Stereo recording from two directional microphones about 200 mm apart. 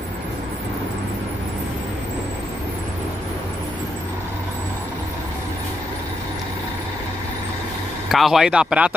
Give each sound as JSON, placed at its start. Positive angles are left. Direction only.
{"t": 8.1, "sound": "speech", "side_deg": 0}